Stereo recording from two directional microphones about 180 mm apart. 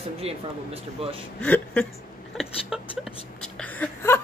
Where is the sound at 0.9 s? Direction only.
30° right (ahead or behind).